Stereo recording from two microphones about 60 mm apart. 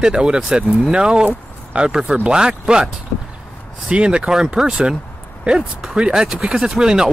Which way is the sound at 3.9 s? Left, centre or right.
Centre.